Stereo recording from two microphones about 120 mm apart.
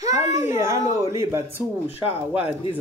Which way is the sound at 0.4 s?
20° right (ahead or behind).